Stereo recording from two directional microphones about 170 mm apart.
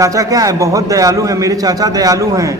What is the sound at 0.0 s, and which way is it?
A man's voice, 20° right (ahead or behind).